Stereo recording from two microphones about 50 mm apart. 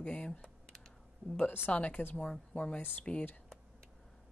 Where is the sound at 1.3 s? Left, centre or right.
Left.